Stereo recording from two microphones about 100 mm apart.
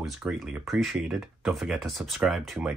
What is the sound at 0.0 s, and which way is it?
Speech, 5° right (ahead or behind).